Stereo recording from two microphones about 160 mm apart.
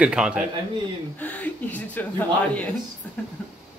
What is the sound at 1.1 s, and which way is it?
Speech, 10° left (ahead or behind).